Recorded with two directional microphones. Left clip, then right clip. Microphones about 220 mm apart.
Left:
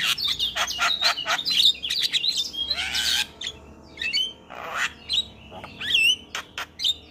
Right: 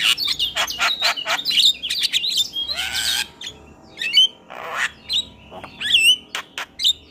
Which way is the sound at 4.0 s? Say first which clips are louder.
Right 10 dB; 15° right (ahead or behind).